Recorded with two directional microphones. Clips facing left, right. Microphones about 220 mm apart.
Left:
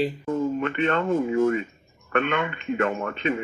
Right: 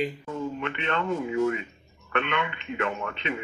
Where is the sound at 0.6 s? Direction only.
45° left (ahead or behind).